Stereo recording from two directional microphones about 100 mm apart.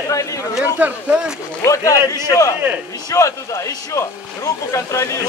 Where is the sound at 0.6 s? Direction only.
15° right (ahead or behind).